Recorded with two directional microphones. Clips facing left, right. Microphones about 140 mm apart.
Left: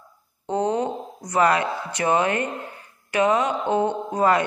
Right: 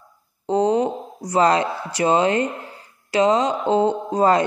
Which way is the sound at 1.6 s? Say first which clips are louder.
Right 3 dB; 20° right (ahead or behind).